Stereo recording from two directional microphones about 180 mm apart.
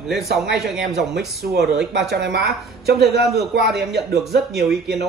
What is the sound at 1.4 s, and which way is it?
Speech, 60° right (ahead or behind).